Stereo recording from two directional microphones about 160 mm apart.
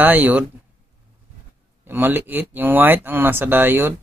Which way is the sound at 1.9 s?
15° right (ahead or behind).